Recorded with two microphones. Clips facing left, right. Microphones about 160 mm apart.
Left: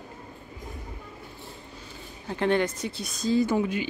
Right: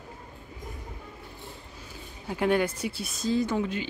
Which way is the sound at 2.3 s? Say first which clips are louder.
Even; 10° right (ahead or behind).